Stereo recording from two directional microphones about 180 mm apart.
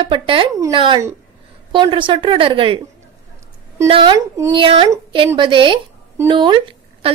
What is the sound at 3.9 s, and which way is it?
A woman's voice, 25° right (ahead or behind).